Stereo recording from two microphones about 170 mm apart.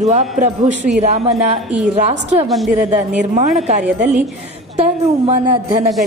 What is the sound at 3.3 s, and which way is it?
Speech, 45° right (ahead or behind).